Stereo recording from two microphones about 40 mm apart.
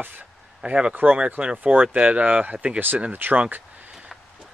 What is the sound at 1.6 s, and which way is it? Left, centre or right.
Speech, right.